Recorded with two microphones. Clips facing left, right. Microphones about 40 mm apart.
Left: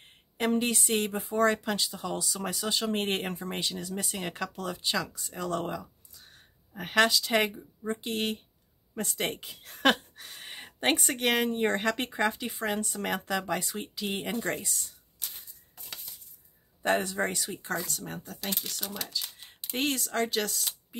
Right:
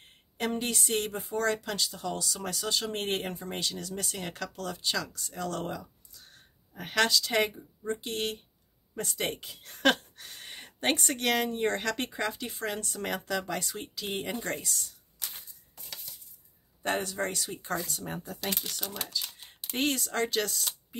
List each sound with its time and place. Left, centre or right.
0.6 s speech: centre
16.8 s speech: centre
17.1 s speech: centre
17.5 s speech: centre